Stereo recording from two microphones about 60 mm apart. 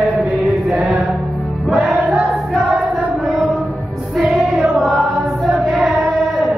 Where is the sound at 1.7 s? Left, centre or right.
Centre.